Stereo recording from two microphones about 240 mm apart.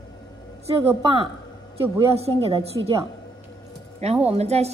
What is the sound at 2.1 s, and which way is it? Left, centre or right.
Speech, right.